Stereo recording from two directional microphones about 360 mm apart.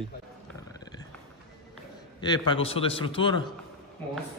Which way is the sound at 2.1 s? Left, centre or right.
Centre.